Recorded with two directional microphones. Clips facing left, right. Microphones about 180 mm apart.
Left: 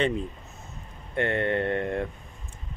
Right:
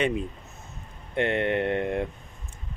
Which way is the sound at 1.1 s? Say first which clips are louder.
Right 1 dB; 20° right (ahead or behind).